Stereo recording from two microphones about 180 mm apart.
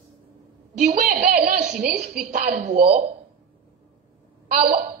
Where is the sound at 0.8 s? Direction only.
55° right (ahead or behind).